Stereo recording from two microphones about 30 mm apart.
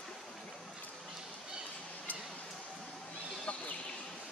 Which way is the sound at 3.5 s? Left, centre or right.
Left.